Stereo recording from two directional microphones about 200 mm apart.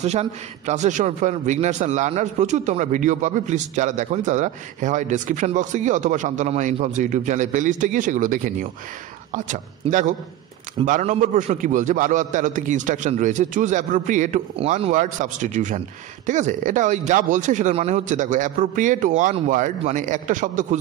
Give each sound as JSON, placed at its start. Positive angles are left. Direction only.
{"t": 0.0, "sound": "a man's voice", "side_deg": -35}